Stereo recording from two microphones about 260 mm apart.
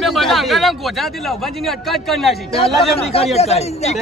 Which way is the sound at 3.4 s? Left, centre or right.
Left.